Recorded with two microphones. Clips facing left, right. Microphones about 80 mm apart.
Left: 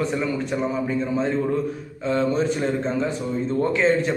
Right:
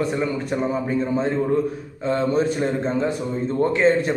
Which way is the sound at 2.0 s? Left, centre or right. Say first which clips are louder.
Right 1 dB; right.